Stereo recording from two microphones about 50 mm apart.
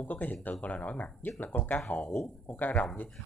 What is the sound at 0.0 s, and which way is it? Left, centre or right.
Speech, left.